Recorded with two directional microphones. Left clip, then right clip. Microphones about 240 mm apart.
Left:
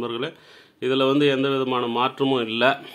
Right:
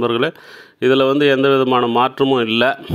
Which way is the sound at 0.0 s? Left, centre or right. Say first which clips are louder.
Right 11 dB; right.